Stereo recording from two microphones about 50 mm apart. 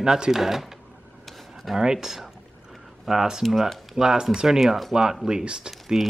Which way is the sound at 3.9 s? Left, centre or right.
Centre.